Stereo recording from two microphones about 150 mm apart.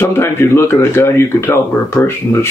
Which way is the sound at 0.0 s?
15° left (ahead or behind).